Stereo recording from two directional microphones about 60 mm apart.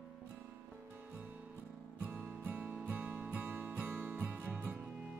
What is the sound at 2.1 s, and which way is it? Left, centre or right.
Music, right.